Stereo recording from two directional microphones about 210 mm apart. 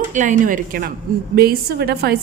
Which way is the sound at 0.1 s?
35° right (ahead or behind).